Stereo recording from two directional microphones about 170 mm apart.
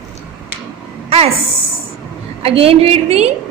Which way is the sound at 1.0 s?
35° right (ahead or behind).